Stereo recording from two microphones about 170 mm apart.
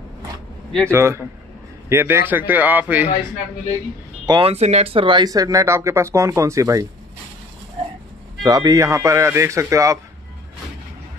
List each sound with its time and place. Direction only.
0.8 s speech: 15° right (ahead or behind)
4.3 s speech: 35° right (ahead or behind); by 6.9 s 20° right (ahead or behind)
8.4 s speech: 20° right (ahead or behind)